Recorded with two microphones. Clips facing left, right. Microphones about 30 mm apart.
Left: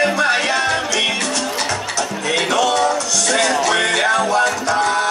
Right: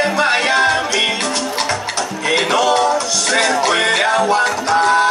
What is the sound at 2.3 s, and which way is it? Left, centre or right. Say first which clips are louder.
Music: right 3 dB; right.